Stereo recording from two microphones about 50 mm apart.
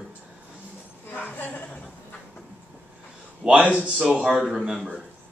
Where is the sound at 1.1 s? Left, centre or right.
Left.